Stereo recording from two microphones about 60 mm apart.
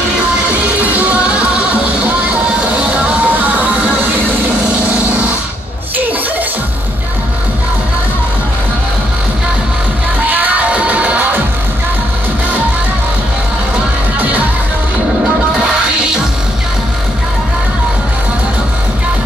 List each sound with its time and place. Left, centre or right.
2.7 s music: right
10.3 s music: right